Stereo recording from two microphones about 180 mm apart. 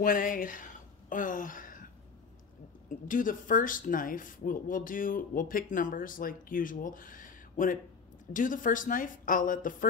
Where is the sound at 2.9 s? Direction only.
45° left (ahead or behind).